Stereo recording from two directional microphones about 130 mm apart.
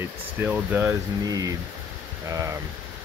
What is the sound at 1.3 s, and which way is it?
Speech, 30° right (ahead or behind).